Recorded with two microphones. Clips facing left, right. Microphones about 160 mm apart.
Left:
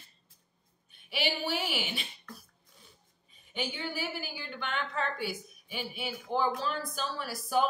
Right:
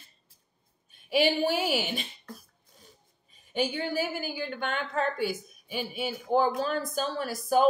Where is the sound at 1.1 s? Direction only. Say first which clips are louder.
Right 8 dB; 45° right (ahead or behind).